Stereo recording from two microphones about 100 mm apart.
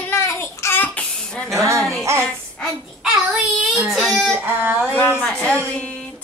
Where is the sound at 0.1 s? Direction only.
25° left (ahead or behind).